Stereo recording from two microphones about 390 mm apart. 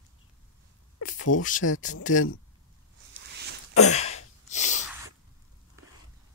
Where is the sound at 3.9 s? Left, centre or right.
Centre.